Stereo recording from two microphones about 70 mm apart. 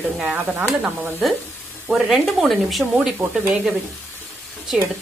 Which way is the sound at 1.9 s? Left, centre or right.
Centre.